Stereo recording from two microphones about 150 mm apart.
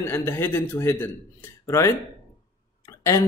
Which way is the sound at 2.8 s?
20° left (ahead or behind).